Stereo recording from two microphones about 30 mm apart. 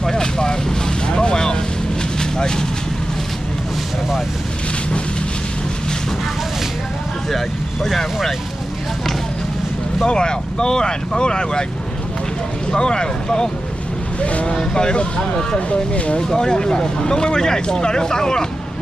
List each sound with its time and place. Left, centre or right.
0.0 s vehicle: left
7.2 s vehicle: centre
10.0 s speech: left
12.7 s speech: left
14.2 s speech: left
14.5 s speech: left
16.3 s speech: left